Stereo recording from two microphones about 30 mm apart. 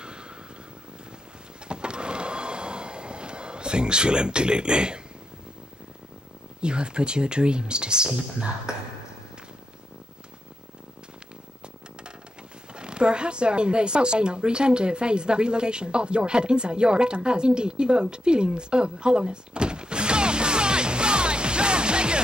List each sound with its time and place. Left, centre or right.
0.0 s vehicle: right
1.7 s a sound: right
6.6 s speech: right
12.7 s speech: right